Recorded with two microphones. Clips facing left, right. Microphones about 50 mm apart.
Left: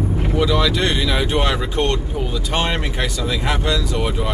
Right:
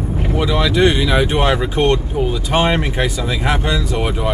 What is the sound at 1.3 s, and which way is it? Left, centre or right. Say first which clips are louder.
Speech: right 3 dB; right.